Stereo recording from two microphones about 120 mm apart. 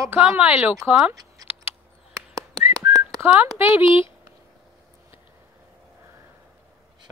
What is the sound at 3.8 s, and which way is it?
Speech, 45° left (ahead or behind).